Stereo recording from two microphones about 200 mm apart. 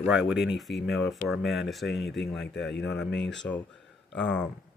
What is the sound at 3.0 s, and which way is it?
Speech, 60° left (ahead or behind).